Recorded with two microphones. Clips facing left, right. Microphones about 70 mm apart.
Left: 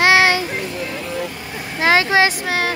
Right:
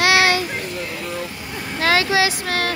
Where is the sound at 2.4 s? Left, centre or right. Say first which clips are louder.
Left 2 dB; centre.